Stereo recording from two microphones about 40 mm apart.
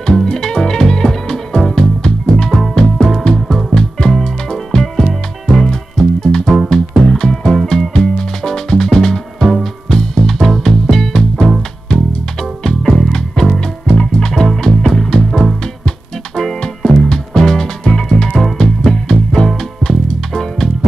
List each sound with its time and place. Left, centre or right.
0.0 s music: centre
9.4 s music: centre
9.8 s music: centre